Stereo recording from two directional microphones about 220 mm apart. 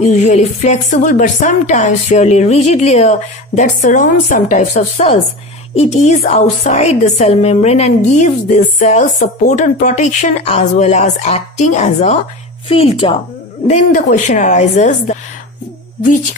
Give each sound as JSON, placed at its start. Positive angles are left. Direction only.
{"t": 0.0, "sound": "speech", "side_deg": 35}
{"t": 13.7, "sound": "speech", "side_deg": 35}